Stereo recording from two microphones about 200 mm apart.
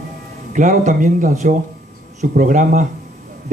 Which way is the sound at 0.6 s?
40° right (ahead or behind).